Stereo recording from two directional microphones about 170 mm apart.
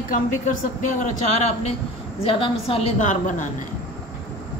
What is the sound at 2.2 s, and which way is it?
Speech, 35° left (ahead or behind).